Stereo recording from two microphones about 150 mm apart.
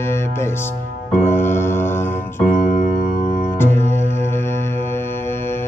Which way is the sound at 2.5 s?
50° left (ahead or behind).